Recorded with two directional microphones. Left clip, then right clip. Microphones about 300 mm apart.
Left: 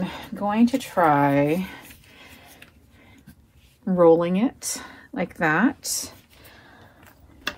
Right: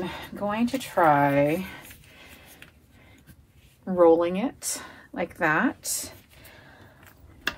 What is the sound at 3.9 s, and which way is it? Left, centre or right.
A woman's voice, left.